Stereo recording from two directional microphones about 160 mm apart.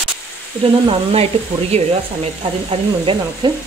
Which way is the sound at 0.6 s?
35° right (ahead or behind).